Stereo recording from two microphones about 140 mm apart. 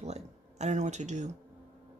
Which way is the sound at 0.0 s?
50° right (ahead or behind).